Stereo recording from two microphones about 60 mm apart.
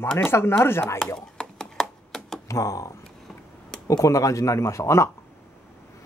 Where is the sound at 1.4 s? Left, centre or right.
Centre.